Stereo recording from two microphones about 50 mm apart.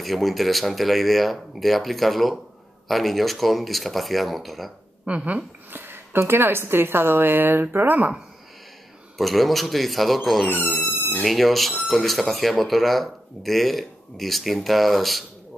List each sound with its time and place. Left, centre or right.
0.0 s speech: centre
5.0 s speech: right
5.7 s a sound: right
6.1 s a woman's voice: right
9.2 s speech: centre